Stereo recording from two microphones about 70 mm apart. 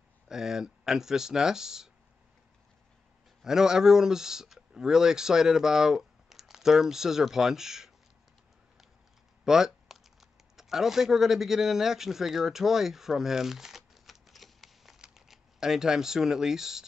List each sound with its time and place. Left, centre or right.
0.3 s speech: centre
3.4 s speech: centre
9.4 s typing: centre
10.5 s a man's voice: centre